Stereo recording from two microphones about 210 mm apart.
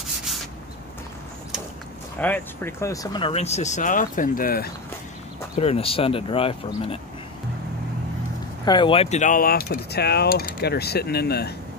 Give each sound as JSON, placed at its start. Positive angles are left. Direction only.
{"t": 0.0, "sound": "rub", "side_deg": 0}
{"t": 2.1, "sound": "speech", "side_deg": 10}
{"t": 5.6, "sound": "speech", "side_deg": 30}
{"t": 8.6, "sound": "speech", "side_deg": 20}